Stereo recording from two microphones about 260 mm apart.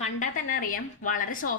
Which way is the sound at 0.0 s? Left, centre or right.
Left.